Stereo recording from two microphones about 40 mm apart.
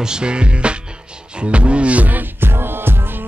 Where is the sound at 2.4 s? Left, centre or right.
Right.